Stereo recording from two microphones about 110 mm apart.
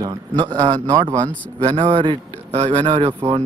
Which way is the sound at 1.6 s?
50° right (ahead or behind).